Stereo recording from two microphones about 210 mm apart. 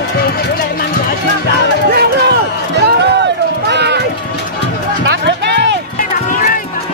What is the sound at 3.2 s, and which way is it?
Run, 55° right (ahead or behind).